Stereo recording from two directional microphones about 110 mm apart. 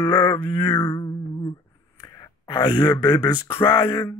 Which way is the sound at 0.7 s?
20° left (ahead or behind).